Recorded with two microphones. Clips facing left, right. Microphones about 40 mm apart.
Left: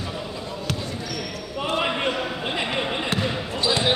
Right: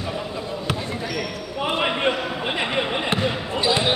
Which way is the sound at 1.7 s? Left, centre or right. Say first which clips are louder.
Right 2 dB; centre.